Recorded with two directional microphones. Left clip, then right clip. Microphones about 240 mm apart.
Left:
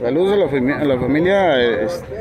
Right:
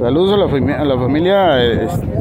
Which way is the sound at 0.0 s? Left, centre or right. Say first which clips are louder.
Right 3 dB; centre.